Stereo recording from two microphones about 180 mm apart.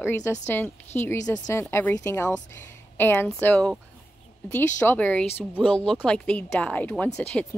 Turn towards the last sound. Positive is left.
turn(degrees=5)  # may be behind; listen again after turning